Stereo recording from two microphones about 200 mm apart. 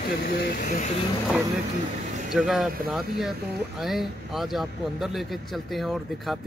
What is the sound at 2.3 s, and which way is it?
Speech, centre (ahead or behind).